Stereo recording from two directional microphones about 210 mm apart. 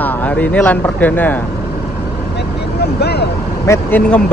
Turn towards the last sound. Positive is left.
turn(degrees=10)  # may be behind; listen again after turning